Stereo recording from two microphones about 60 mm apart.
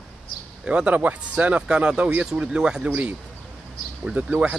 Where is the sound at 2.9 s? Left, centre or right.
Right.